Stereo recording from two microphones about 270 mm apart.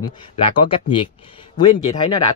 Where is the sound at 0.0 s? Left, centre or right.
Centre.